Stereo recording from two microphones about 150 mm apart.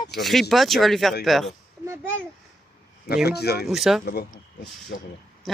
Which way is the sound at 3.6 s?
Centre (ahead or behind).